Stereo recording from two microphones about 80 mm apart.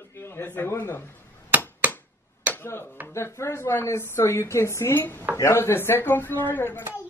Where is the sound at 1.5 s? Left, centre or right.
Right.